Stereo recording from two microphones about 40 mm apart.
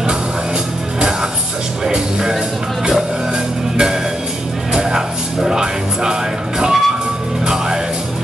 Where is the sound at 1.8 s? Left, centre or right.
Centre.